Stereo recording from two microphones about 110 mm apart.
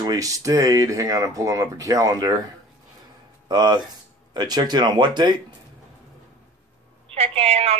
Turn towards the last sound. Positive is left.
turn(degrees=-65)  # may be behind; listen again after turning